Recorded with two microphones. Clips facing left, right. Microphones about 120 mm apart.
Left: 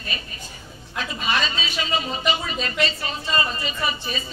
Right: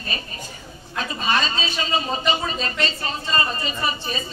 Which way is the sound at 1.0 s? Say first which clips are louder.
Right 2 dB; 35° right (ahead or behind).